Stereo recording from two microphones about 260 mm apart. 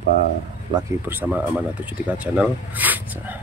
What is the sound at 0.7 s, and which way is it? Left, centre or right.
Speech, centre.